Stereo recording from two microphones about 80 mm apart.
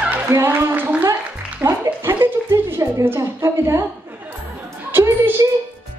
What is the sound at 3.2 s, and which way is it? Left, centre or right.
Speech, right.